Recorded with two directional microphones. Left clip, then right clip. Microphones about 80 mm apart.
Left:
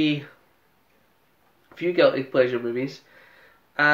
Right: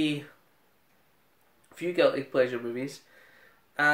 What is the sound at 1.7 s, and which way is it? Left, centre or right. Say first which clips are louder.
Speech: left 5 dB; right.